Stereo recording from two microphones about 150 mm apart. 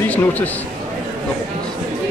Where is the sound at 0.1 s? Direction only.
10° left (ahead or behind).